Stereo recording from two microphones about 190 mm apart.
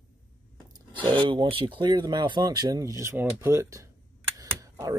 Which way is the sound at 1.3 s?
25° right (ahead or behind).